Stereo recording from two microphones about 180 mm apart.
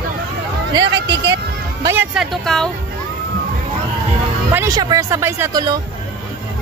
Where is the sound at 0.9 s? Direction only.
80° right.